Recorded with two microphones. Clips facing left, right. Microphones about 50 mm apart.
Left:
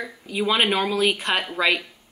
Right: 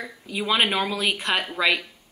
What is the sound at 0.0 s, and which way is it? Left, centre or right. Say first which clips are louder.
Speech: left 4 dB; centre.